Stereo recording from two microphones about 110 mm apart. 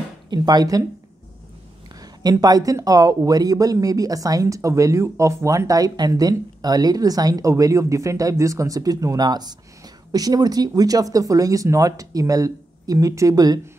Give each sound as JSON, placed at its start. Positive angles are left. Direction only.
{"t": 0.3, "sound": "speech", "side_deg": -40}
{"t": 2.0, "sound": "speech", "side_deg": -35}